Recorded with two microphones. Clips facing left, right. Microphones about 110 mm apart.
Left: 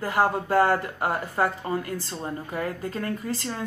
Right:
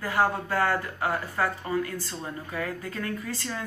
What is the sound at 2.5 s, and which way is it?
A woman's voice, 40° left (ahead or behind).